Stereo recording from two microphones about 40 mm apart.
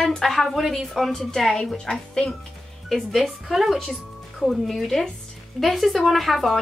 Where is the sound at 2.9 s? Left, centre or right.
Centre.